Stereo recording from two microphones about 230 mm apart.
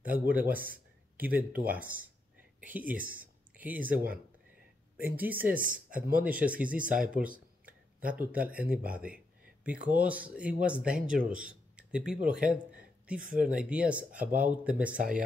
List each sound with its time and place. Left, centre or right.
0.0 s speech: centre
0.6 s a sound: right
1.2 s speech: centre
3.2 s a sound: centre
3.9 s speech: right
5.0 s speech: centre
5.6 s speech: right
6.2 s speech: centre
6.7 s speech: right
7.0 s speech: centre